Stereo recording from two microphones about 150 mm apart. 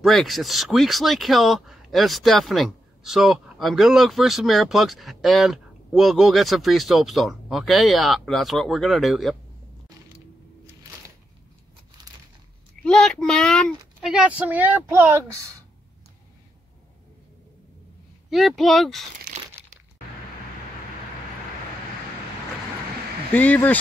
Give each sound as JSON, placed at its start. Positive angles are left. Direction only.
{"t": 0.0, "sound": "speech", "side_deg": 0}
{"t": 12.8, "sound": "speech", "side_deg": 5}
{"t": 18.3, "sound": "speech", "side_deg": 0}
{"t": 23.3, "sound": "speech", "side_deg": 10}